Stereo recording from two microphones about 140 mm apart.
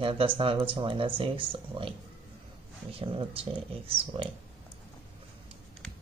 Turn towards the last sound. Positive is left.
turn(degrees=-40)  # may be behind; listen again after turning